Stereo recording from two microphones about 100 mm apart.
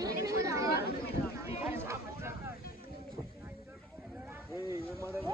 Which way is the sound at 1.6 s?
25° right (ahead or behind).